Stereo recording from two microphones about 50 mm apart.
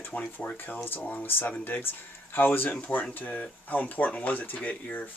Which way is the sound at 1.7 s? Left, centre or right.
Left.